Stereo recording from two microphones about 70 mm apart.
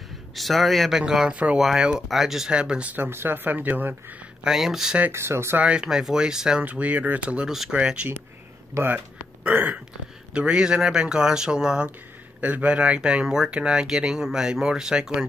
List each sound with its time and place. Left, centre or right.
0.4 s speech: centre
1.6 s speech: centre
2.9 s speech: right
4.5 s speech: centre
5.1 s speech: right
5.6 s speech: centre
6.6 s speech: right
7.4 s speech: centre
7.7 s speech: centre
10.3 s speech: centre
12.4 s speech: right